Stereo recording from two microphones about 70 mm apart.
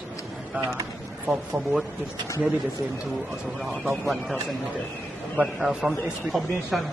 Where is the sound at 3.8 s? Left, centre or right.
Centre.